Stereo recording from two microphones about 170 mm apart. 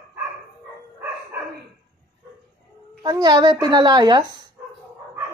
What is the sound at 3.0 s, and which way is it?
A child's voice, 25° right (ahead or behind).